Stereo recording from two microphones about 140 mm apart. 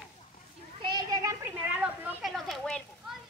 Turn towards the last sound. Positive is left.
turn(degrees=0)  # may be behind; listen again after turning